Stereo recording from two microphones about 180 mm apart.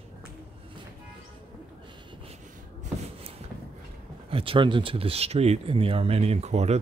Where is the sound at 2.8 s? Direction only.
35° right (ahead or behind).